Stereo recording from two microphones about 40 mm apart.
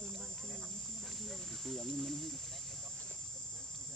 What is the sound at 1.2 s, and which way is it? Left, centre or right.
Speech, centre.